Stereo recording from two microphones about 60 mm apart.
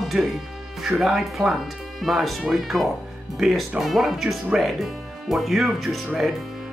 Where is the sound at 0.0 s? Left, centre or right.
Centre.